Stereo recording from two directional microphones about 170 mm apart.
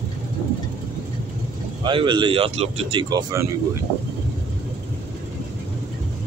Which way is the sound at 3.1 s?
20° right (ahead or behind).